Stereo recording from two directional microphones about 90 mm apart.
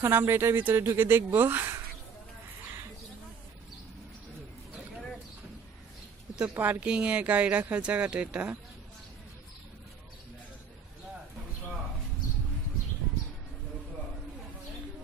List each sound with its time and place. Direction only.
0.0 s speech: 25° right (ahead or behind)
6.3 s speech: 15° right (ahead or behind)